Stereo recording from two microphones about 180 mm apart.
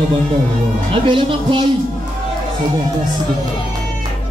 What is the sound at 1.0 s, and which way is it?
Speech, 25° right (ahead or behind).